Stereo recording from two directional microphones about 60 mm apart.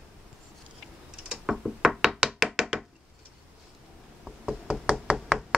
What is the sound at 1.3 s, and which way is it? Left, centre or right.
Mechanisms, centre.